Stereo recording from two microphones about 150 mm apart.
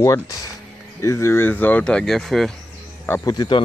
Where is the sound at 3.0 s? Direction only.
15° left (ahead or behind).